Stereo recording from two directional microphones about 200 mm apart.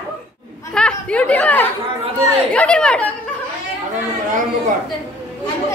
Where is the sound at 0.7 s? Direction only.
5° left (ahead or behind).